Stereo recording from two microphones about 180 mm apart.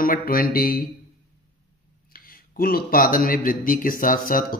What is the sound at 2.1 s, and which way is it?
Speech, 55° left (ahead or behind).